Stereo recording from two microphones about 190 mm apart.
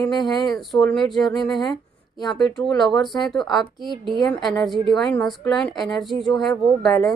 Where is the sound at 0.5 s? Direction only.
Centre (ahead or behind).